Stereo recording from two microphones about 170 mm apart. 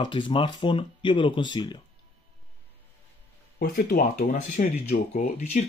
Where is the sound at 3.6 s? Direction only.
55° left (ahead or behind).